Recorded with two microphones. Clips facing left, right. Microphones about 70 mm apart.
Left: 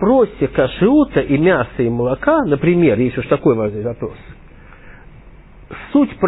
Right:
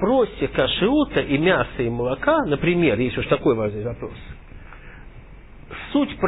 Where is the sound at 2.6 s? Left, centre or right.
Left.